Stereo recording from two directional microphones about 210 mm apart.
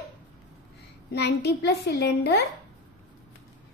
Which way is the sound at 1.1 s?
50° left (ahead or behind).